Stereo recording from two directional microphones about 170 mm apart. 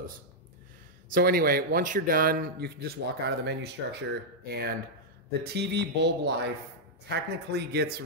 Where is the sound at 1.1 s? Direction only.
60° right (ahead or behind); by 6.3 s 90° right.